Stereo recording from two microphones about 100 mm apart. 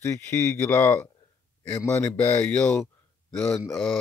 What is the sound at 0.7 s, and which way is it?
Speech, 25° left (ahead or behind).